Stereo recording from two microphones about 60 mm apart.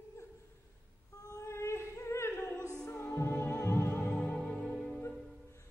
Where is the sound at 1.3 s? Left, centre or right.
Left.